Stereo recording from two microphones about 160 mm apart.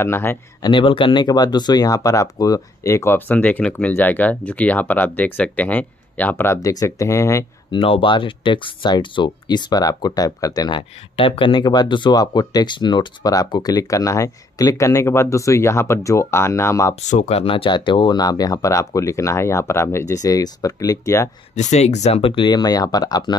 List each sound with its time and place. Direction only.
0.0 s speech: 15° left (ahead or behind)
0.7 s speech: 30° left (ahead or behind)
7.7 s speech: 35° left (ahead or behind)
11.1 s speech: 35° left (ahead or behind)
16.9 s speech: 45° left (ahead or behind); by 21.3 s 20° left (ahead or behind)
21.5 s speech: 45° left (ahead or behind); by 23.3 s 25° left (ahead or behind)